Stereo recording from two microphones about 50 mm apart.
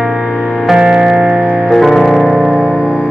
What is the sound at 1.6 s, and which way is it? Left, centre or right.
Music, centre.